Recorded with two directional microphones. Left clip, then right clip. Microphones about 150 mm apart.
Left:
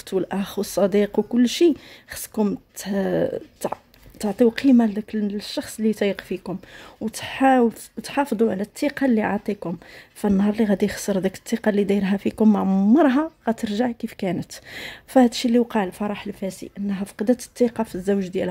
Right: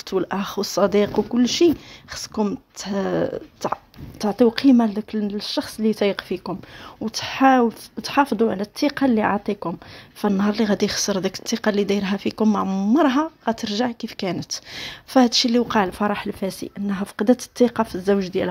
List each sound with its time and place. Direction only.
0.0 s speech: 20° left (ahead or behind)
12.6 s a woman's voice: 40° left (ahead or behind)
12.9 s speech: 25° left (ahead or behind)
15.6 s speech: centre (ahead or behind)
17.9 s speech: 10° left (ahead or behind)